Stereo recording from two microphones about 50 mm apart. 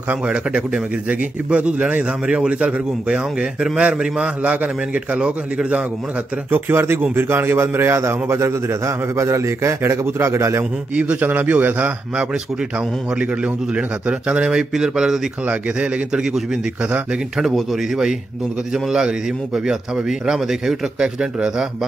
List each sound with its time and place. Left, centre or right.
0.5 s a man's voice: right
6.5 s a man's voice: right
11.0 s a man's voice: right
11.2 s a man's voice: right
12.7 s a man's voice: right